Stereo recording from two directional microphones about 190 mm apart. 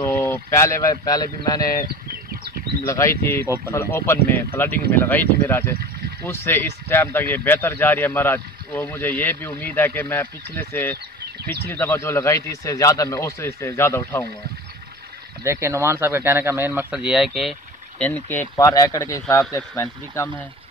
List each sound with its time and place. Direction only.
0.0 s speech: 10° left (ahead or behind)
2.9 s speech: 15° left (ahead or behind)
15.4 s speech: 15° right (ahead or behind); by 20.4 s 10° left (ahead or behind)